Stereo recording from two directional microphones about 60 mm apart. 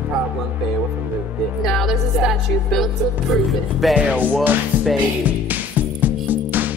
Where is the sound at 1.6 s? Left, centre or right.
Centre.